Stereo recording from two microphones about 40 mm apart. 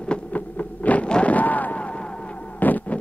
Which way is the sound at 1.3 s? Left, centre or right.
Left.